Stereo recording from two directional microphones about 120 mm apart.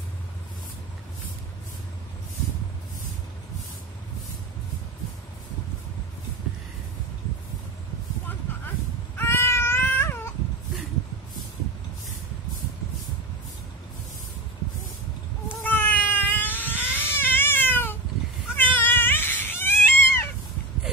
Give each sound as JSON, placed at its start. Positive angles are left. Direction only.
{"t": 8.3, "sound": "baby cry", "side_deg": 15}
{"t": 15.4, "sound": "cat", "side_deg": 15}